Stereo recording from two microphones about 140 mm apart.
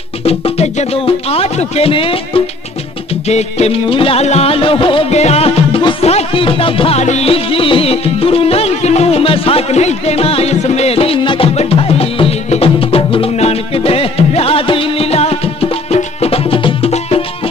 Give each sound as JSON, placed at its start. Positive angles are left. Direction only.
{"t": 0.2, "sound": "speech", "side_deg": 45}
{"t": 5.2, "sound": "music", "side_deg": 45}